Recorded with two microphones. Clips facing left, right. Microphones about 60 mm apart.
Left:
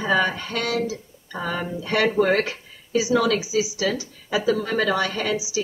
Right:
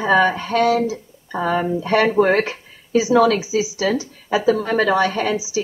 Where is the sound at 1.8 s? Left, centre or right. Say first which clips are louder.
Right 3 dB; right.